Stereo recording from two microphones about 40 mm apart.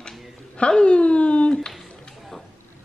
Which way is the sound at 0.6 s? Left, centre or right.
Left.